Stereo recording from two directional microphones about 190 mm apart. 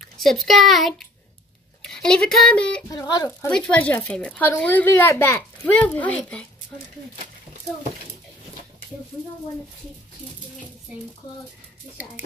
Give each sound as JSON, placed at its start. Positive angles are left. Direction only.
{"t": 0.2, "sound": "speech", "side_deg": 0}
{"t": 2.9, "sound": "speech", "side_deg": 20}
{"t": 3.4, "sound": "a woman's voice", "side_deg": 5}